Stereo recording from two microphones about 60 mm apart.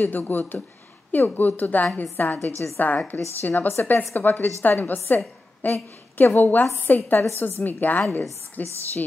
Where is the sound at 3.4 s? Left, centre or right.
Left.